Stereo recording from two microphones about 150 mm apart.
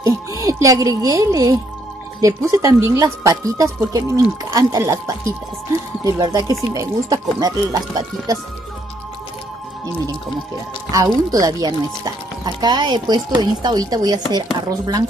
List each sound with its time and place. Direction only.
0.0 s speech: 20° right (ahead or behind)
10.9 s speech: 25° right (ahead or behind)